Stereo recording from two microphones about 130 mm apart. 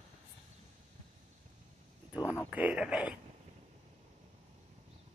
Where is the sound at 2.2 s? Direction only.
20° left (ahead or behind).